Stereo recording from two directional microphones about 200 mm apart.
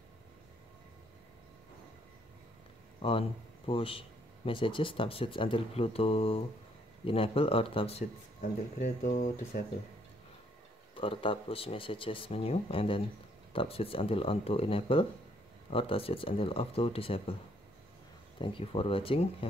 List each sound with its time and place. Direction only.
3.0 s speech: 25° left (ahead or behind)
11.0 s speech: 25° left (ahead or behind)
18.4 s speech: 25° left (ahead or behind)